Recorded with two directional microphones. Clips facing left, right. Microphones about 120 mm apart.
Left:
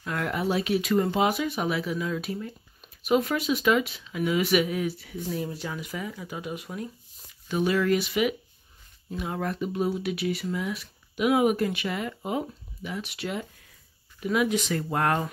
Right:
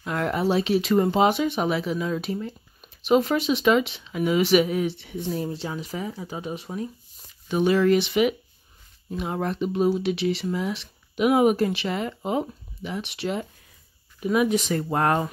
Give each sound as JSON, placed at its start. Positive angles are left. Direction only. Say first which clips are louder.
{"t": 0.0, "sound": "speech", "louder": "right 4 dB", "side_deg": -30}